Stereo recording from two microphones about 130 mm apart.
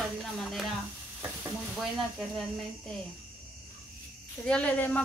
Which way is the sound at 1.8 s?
Centre (ahead or behind).